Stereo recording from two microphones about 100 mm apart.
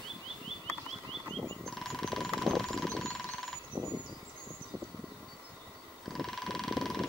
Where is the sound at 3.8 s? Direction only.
25° right (ahead or behind).